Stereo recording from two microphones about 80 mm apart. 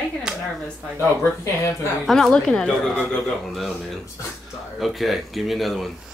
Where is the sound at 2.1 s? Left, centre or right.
Centre.